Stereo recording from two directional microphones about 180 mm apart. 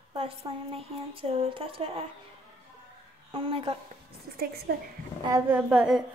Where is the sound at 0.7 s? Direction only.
30° right (ahead or behind).